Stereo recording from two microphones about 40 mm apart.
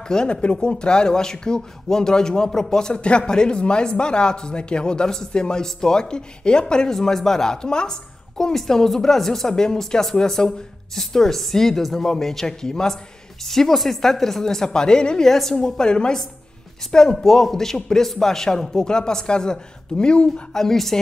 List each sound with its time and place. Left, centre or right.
0.1 s a woman's voice: centre
2.9 s a woman's voice: left
15.3 s a woman's voice: centre
15.8 s a woman's voice: left